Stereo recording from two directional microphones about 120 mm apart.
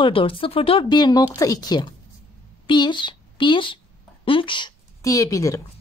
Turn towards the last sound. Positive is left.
turn(degrees=25)  # may be behind; listen again after turning